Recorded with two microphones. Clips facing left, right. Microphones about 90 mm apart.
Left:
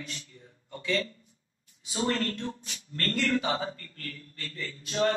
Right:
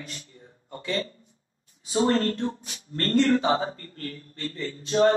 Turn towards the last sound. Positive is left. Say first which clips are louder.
# right 7 dB
turn(degrees=-30)  # may be behind; listen again after turning